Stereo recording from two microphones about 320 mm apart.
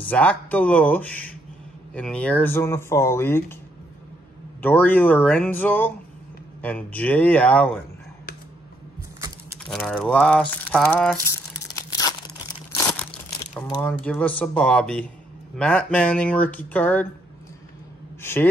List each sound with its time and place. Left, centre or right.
0.1 s speech: centre
4.6 s speech: centre
9.7 s speech: centre
12.7 s crumpling: centre
15.5 s speech: centre
18.2 s speech: centre